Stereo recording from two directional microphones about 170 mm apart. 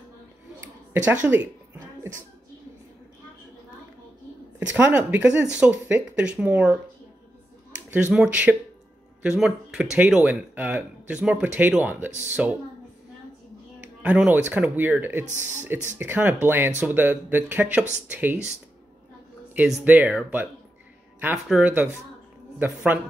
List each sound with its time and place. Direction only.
0.6 s a sound: 10° right (ahead or behind)
4.6 s speech: 10° right (ahead or behind)
7.9 s speech: 5° right (ahead or behind)
14.0 s speech: 10° right (ahead or behind)
15.2 s speech: 45° right (ahead or behind)
16.0 s speech: 10° right (ahead or behind)
19.8 s speech: 10° right (ahead or behind)
22.9 s speech: 10° right (ahead or behind)